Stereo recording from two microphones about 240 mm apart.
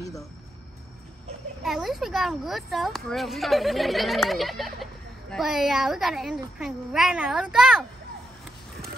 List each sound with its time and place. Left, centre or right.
1.6 s speech: centre